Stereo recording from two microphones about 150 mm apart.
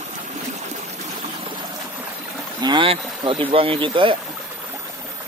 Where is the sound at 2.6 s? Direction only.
35° right (ahead or behind).